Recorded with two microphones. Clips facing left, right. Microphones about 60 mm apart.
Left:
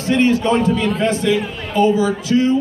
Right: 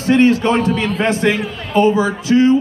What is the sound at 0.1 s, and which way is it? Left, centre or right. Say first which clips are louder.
A man's voice: right 3 dB; right.